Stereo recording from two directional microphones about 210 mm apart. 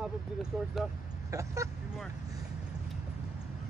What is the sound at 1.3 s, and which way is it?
Speech, 15° right (ahead or behind).